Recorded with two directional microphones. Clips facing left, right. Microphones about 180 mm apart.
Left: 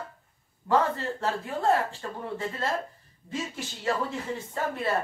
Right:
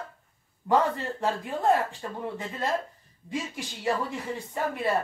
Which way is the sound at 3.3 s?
15° right (ahead or behind).